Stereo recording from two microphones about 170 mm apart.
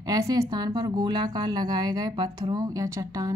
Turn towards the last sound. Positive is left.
turn(degrees=-20)  # may be behind; listen again after turning